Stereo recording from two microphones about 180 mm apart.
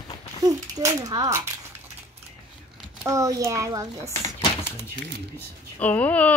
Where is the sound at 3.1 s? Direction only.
15° right (ahead or behind).